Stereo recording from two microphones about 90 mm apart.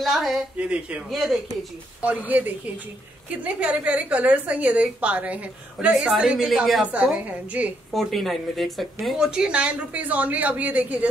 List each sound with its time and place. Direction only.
0.0 s speech: centre (ahead or behind)
0.6 s a woman's voice: 15° right (ahead or behind)
1.1 s speech: centre (ahead or behind)
2.0 s a woman's voice: 15° right (ahead or behind)
7.9 s a woman's voice: centre (ahead or behind); by 11.1 s 15° right (ahead or behind)